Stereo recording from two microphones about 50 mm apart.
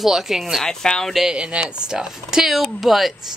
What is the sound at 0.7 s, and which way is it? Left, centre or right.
Speech, centre.